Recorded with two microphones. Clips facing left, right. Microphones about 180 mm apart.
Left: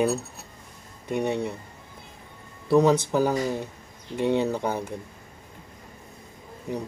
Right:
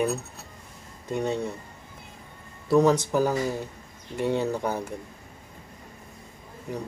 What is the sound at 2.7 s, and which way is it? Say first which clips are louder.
Speech: left 1 dB; 20° left (ahead or behind).